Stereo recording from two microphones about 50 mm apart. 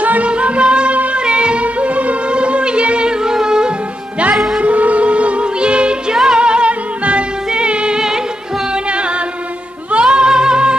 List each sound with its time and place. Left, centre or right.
0.0 s music: right; by 3.7 s centre
4.6 s music: right
10.0 s cat: centre